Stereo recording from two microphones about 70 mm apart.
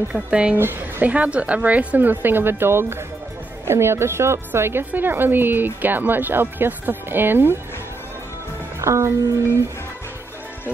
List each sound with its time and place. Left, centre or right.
0.1 s speech: centre
0.6 s speech: right
1.1 s a woman's voice: centre
8.8 s speech: right